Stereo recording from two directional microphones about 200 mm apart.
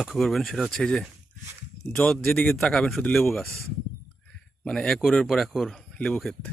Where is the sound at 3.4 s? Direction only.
15° right (ahead or behind).